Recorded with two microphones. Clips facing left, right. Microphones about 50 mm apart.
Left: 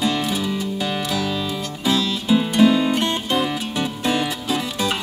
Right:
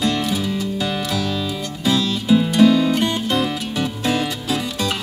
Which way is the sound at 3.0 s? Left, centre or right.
Centre.